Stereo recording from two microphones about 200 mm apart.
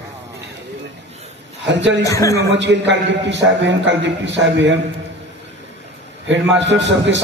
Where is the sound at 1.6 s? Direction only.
60° right (ahead or behind).